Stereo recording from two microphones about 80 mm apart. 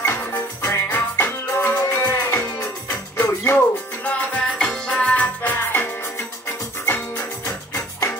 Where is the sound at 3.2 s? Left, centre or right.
Left.